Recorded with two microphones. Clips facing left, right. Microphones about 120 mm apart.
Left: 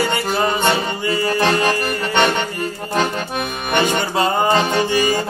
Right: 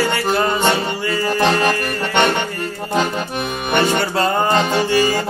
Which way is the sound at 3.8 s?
15° left (ahead or behind).